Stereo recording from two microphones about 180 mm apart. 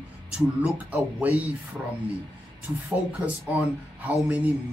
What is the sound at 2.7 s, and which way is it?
Speech, 15° right (ahead or behind).